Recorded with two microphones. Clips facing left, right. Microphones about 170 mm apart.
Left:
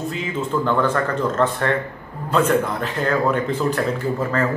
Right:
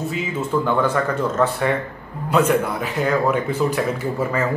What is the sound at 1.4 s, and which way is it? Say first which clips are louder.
Speech: right 1 dB; 5° right (ahead or behind).